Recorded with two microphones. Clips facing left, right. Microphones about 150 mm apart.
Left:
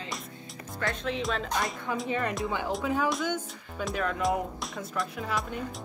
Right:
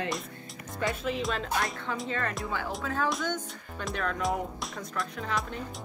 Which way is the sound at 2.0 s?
15° left (ahead or behind).